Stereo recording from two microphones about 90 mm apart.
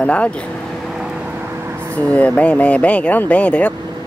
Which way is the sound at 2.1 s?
15° left (ahead or behind).